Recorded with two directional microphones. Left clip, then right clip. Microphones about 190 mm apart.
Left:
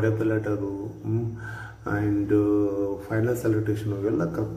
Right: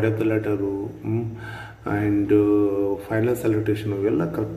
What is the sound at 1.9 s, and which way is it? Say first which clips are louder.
A man's voice: right 4 dB; 10° right (ahead or behind).